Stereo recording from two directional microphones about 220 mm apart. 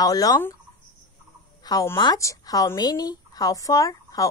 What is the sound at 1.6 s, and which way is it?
Speech, 15° left (ahead or behind).